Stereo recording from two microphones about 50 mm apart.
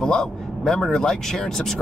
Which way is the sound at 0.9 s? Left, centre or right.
Centre.